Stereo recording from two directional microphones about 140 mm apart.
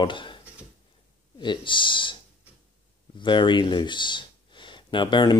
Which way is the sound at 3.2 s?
35° left (ahead or behind).